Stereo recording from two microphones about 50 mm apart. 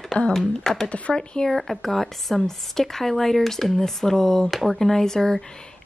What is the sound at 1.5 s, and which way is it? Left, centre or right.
Speech, centre.